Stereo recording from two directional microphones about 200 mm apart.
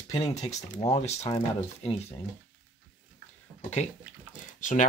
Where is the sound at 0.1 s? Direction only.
30° left (ahead or behind).